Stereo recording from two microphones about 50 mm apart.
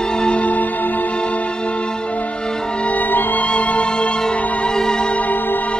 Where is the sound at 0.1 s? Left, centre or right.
Centre.